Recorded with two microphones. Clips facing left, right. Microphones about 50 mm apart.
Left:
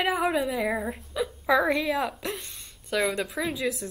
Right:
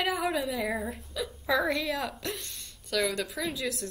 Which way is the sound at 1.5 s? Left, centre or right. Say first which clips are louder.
Left 4 dB; centre.